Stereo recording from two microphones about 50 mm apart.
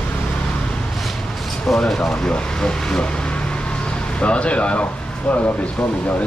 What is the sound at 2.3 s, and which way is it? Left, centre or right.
Speech, centre.